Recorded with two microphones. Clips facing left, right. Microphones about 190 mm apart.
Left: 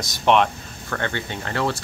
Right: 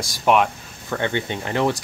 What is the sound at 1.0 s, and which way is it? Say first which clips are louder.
Speech: right 4 dB; 20° right (ahead or behind).